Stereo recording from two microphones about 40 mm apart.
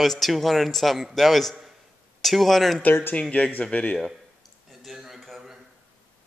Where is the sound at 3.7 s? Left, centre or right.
Left.